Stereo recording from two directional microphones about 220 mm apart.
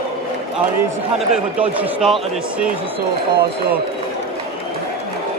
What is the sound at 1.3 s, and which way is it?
Speech, 5° right (ahead or behind).